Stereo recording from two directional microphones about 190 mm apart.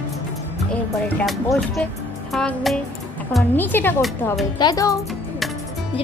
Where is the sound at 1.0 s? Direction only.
5° left (ahead or behind); by 4.9 s 20° left (ahead or behind).